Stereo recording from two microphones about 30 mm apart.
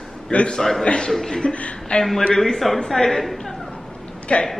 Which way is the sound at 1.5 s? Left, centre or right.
Left.